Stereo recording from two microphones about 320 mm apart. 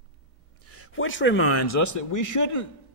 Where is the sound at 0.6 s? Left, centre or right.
Left.